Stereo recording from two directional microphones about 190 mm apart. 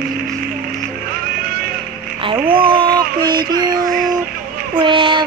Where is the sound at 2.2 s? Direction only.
25° right (ahead or behind).